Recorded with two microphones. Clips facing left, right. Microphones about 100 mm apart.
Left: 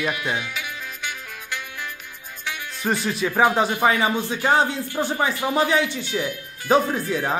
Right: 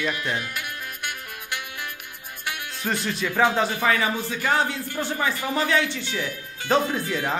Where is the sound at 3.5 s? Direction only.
20° left (ahead or behind).